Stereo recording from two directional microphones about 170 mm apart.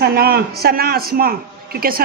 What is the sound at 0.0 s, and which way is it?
Speech, 65° right (ahead or behind).